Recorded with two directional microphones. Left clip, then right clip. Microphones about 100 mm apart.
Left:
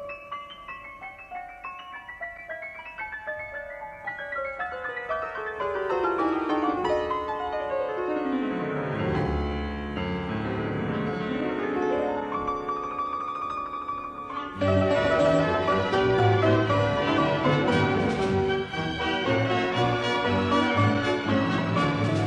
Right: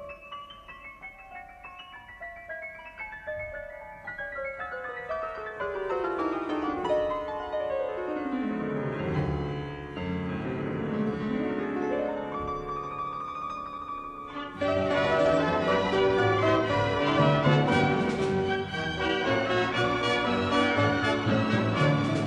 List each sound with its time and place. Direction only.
4.4 s music: 25° right (ahead or behind)